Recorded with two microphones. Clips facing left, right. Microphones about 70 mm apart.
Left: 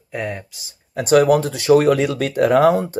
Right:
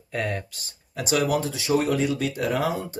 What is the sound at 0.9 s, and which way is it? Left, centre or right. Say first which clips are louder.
Speech: left 10 dB; left.